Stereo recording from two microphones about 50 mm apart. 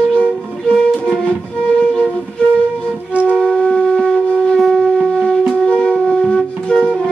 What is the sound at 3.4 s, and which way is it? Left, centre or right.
Wind instrument, centre.